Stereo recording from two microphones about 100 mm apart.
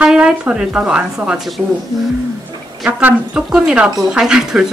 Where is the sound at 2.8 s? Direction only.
15° right (ahead or behind).